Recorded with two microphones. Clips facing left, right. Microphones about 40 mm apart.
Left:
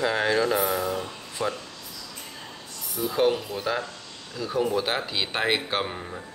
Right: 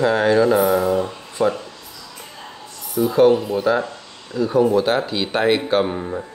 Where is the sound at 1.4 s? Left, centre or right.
Right.